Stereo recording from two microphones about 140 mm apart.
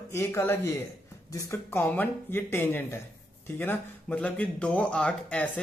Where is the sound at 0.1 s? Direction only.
20° left (ahead or behind).